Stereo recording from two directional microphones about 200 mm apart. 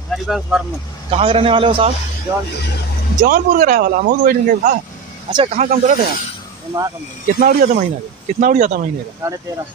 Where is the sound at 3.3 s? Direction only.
40° right (ahead or behind).